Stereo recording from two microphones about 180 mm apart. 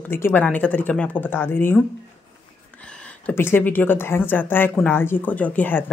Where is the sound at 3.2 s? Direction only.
10° left (ahead or behind).